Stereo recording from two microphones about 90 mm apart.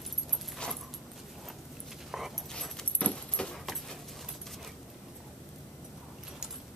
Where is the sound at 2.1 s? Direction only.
5° right (ahead or behind).